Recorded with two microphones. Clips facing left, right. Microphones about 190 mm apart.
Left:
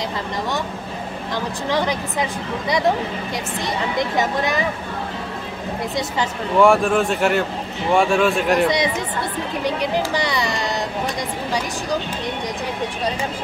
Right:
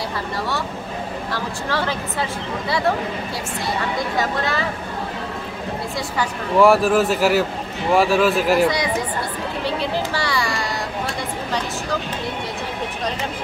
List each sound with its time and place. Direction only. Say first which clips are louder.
1.3 s speech: left 4 dB; 15° left (ahead or behind)
4.2 s speech: left 2 dB; 15° left (ahead or behind)
6.6 s speech: right 1 dB; 5° right (ahead or behind)
8.6 s speech: left 1 dB; 20° left (ahead or behind)
9.7 s a sound: left 2 dB; 15° left (ahead or behind)